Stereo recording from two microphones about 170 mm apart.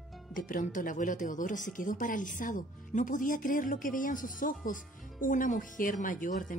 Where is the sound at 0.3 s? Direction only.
55° left (ahead or behind).